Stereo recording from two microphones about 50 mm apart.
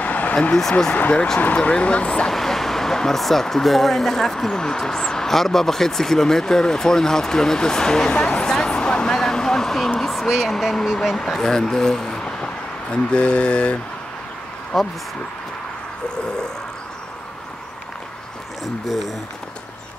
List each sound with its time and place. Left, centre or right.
0.0 s a sound: left
0.6 s speech: centre
1.4 s mantra: left
2.2 s speech: centre
12.9 s mantra: centre
14.7 s speech: centre
18.6 s speech: centre